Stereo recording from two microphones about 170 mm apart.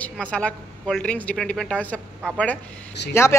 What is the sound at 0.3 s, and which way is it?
A woman's voice, 5° left (ahead or behind).